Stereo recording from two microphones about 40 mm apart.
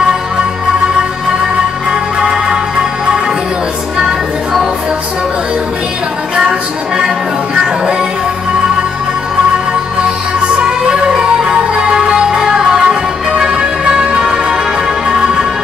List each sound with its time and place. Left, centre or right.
2.1 s music: right
10.6 s music: right
14.2 s music: centre